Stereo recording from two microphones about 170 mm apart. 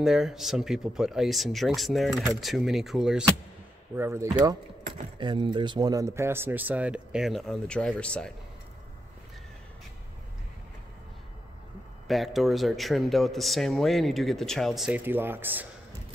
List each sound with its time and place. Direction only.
0.0 s speech: centre (ahead or behind)
3.9 s speech: 15° right (ahead or behind)
5.2 s speech: 30° right (ahead or behind); by 8.3 s 5° left (ahead or behind)
12.1 s speech: centre (ahead or behind)